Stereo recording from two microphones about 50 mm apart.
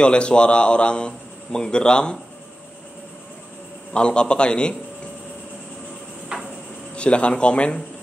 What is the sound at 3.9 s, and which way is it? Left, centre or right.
Speech, left.